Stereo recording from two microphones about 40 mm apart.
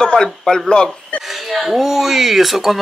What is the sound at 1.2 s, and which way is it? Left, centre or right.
Speech, centre.